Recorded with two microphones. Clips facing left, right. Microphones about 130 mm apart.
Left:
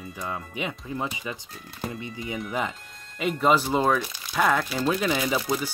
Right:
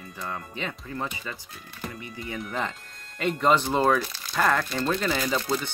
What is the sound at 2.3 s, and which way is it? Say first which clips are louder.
Speech: left 1 dB; 5° left (ahead or behind).